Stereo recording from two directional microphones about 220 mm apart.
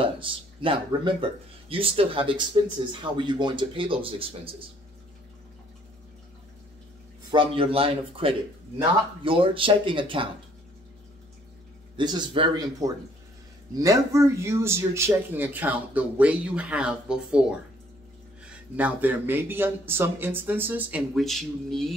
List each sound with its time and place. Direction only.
0.0 s speech: 25° right (ahead or behind)
7.2 s speech: 25° right (ahead or behind)
12.0 s speech: 20° right (ahead or behind); by 21.9 s centre (ahead or behind)